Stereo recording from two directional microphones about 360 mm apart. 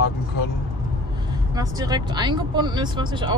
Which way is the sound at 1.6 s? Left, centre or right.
Centre.